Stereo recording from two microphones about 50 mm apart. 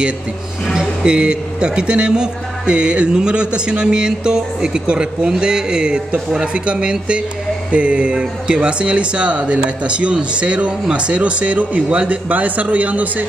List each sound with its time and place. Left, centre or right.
0.7 s a man's voice: centre